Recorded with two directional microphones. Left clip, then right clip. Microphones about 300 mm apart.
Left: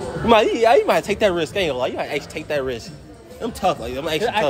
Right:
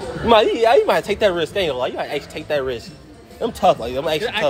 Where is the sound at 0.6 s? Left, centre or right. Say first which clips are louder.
Right 1 dB; centre.